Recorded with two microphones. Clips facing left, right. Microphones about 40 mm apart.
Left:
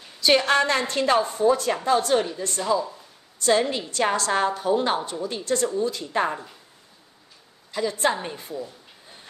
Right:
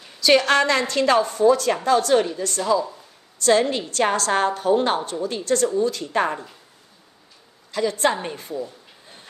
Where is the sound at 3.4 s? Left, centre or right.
Right.